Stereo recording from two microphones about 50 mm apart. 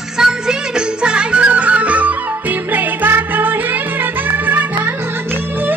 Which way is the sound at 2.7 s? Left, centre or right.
Right.